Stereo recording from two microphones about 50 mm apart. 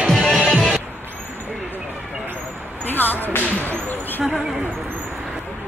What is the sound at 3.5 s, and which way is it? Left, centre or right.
Whip, left.